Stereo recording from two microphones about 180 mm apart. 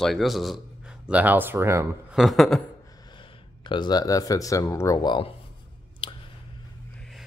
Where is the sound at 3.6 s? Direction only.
25° left (ahead or behind).